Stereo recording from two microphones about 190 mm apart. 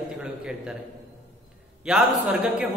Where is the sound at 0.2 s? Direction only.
5° right (ahead or behind).